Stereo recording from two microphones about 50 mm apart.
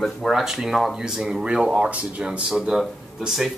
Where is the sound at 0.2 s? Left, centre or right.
Centre; by 2.4 s right.